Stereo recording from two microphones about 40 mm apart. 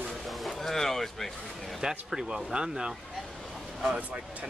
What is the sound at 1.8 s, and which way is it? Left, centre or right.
Speech, centre.